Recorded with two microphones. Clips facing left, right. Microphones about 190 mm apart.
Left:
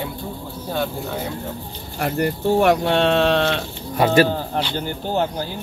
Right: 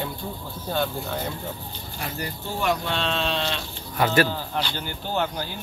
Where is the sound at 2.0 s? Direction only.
60° left (ahead or behind).